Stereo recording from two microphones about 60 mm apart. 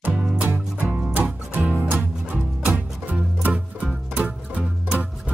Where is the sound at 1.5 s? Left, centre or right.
Right.